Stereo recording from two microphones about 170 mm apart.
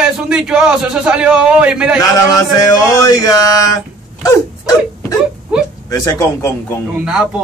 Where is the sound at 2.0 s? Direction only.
20° left (ahead or behind).